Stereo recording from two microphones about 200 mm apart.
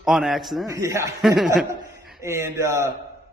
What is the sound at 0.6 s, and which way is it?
Speech, 15° right (ahead or behind).